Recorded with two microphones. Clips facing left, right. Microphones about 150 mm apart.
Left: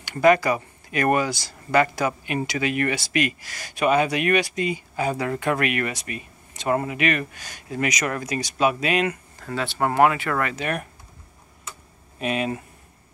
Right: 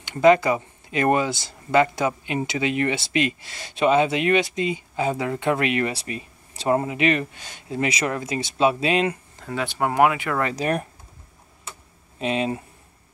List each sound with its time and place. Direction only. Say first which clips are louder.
0.0 s speech: right 2 dB; 20° right (ahead or behind)
9.5 s speech: even; 15° right (ahead or behind)
10.4 s speech: right 3 dB; 30° right (ahead or behind)
12.2 s speech: right 1 dB; 25° right (ahead or behind)